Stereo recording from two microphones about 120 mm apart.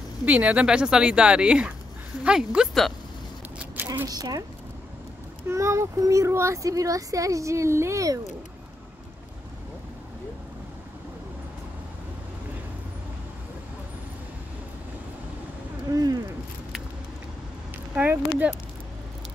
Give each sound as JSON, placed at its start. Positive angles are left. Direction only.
{"t": 0.2, "sound": "speech", "side_deg": -10}
{"t": 3.5, "sound": "a sound", "side_deg": -15}
{"t": 4.1, "sound": "speech", "side_deg": -30}
{"t": 5.5, "sound": "speech", "side_deg": -25}
{"t": 15.9, "sound": "speech", "side_deg": -30}
{"t": 17.9, "sound": "speech", "side_deg": -15}